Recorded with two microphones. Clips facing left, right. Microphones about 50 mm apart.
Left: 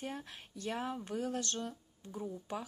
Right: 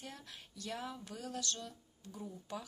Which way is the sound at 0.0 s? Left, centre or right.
Left.